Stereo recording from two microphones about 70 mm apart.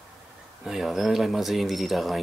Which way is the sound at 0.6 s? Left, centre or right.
Centre.